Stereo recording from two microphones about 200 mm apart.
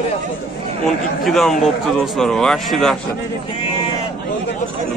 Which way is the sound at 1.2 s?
Centre (ahead or behind).